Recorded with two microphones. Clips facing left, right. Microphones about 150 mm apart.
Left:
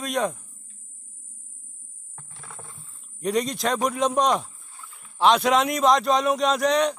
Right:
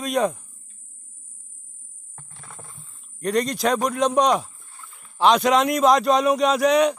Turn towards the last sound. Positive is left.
turn(degrees=-5)  # may be behind; listen again after turning